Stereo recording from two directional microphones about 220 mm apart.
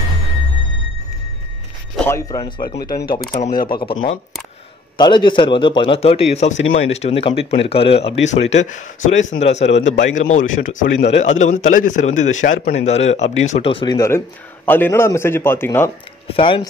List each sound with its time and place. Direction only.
2.0 s speech: 10° left (ahead or behind)
2.8 s a man's voice: 45° left (ahead or behind); by 15.9 s 10° left (ahead or behind)
16.3 s speech: 25° left (ahead or behind)